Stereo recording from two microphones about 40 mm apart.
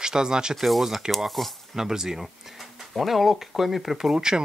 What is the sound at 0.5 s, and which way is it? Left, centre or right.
Speech, centre.